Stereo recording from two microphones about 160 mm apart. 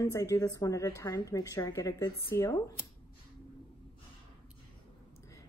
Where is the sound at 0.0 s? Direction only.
20° left (ahead or behind).